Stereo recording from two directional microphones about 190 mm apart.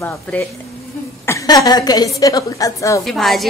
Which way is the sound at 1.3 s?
15° left (ahead or behind).